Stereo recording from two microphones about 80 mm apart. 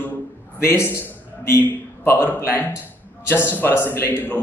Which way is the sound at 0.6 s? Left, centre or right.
Left.